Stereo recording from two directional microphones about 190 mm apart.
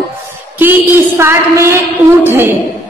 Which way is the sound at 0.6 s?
10° right (ahead or behind).